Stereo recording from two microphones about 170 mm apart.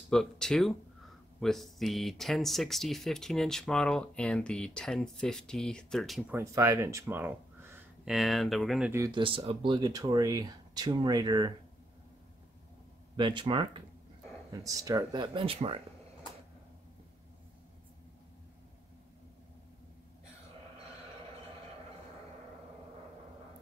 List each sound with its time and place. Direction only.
0.1 s speech: 5° left (ahead or behind)
6.3 s speech: 20° right (ahead or behind); by 8.9 s centre (ahead or behind)
8.9 s speech: 20° right (ahead or behind)
9.2 s speech: 30° right (ahead or behind)
13.1 s speech: 30° right (ahead or behind)